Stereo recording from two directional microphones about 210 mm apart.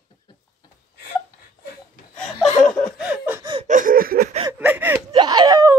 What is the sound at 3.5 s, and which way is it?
Gasp, 35° right (ahead or behind).